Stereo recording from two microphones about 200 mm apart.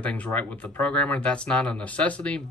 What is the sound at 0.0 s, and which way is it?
Speech, 5° left (ahead or behind).